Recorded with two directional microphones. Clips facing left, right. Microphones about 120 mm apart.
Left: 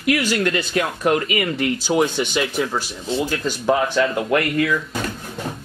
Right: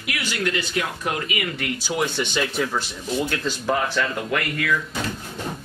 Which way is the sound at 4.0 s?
30° left (ahead or behind).